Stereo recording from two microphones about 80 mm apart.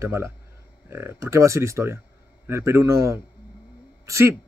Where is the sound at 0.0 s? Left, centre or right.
Right.